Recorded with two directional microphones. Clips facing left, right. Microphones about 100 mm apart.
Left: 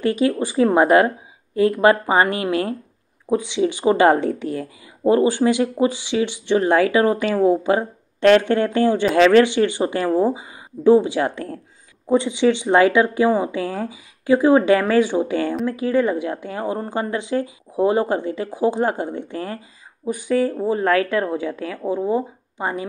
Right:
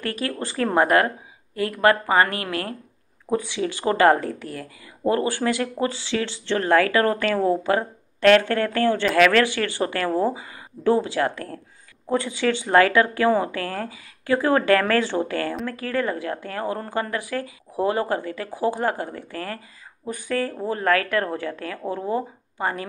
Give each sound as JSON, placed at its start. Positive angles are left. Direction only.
{"t": 0.0, "sound": "speech", "side_deg": 20}
{"t": 0.8, "sound": "speech", "side_deg": 25}